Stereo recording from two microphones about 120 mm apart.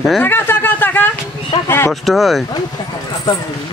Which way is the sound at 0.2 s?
15° left (ahead or behind).